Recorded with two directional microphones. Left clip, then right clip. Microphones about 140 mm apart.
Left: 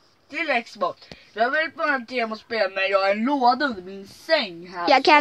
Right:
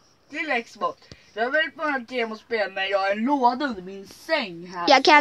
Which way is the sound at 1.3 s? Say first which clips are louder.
Left 1 dB; 40° left (ahead or behind).